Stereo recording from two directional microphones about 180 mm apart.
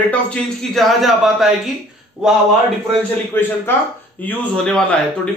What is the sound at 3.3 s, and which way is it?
A man's voice, 10° left (ahead or behind).